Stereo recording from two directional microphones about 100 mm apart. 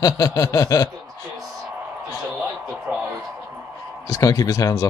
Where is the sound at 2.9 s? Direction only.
10° right (ahead or behind).